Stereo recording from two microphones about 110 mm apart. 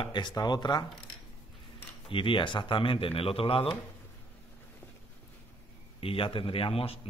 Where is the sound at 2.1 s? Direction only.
50° left (ahead or behind).